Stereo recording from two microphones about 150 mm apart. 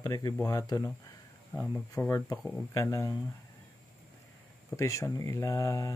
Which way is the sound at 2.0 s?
10° left (ahead or behind).